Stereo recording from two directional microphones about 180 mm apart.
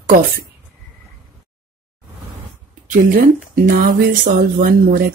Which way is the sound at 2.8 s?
50° right (ahead or behind).